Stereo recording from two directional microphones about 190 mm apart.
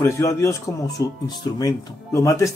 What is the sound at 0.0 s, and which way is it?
Speech, 15° left (ahead or behind).